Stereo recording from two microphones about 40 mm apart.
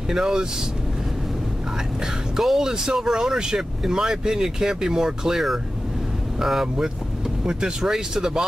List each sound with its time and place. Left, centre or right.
0.1 s speech: centre
2.3 s speech: centre